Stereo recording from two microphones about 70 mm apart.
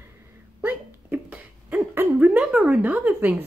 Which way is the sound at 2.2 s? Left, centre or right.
Centre.